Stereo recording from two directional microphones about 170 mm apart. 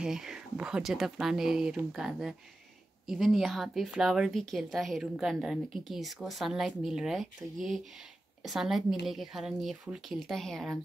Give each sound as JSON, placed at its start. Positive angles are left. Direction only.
{"t": 0.0, "sound": "a woman's voice", "side_deg": -5}